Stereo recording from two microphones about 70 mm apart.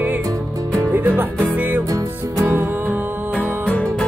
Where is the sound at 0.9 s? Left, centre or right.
Right.